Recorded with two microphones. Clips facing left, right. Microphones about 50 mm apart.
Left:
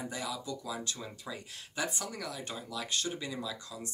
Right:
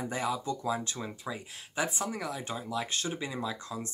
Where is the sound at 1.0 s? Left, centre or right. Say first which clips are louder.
Right 4 dB; centre.